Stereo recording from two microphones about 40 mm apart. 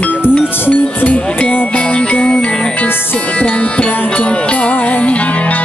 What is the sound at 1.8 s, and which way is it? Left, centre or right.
Music, left.